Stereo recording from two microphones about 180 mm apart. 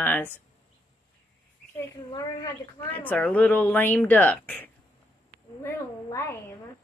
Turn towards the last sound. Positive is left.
turn(degrees=15)  # may be behind; listen again after turning